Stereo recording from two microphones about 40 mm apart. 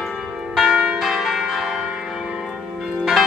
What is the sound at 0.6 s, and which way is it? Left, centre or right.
Church bell, right.